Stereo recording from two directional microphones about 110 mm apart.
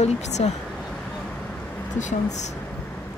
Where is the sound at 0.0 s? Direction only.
85° left.